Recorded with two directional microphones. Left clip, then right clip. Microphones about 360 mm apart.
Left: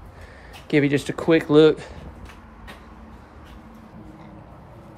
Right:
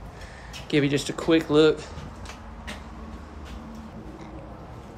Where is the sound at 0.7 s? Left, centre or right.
Centre.